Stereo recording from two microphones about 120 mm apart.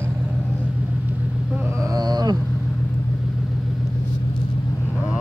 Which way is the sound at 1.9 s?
35° right (ahead or behind).